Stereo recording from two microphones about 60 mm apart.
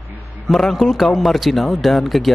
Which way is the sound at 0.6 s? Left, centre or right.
Centre.